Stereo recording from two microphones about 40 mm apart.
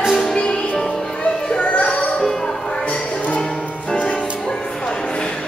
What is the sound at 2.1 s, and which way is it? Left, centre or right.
Music, centre.